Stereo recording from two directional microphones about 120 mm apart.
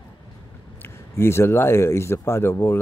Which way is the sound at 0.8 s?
20° left (ahead or behind).